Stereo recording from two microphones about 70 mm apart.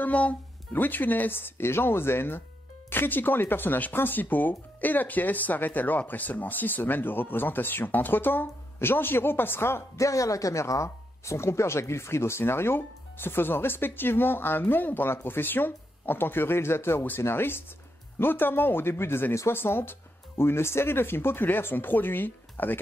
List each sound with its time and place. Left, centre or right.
0.0 s speech: left
10.0 s speech: left